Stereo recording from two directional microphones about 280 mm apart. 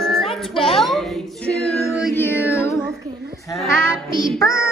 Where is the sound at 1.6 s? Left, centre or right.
Centre.